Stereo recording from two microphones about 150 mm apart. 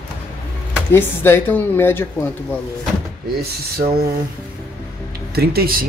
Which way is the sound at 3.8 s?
35° right (ahead or behind).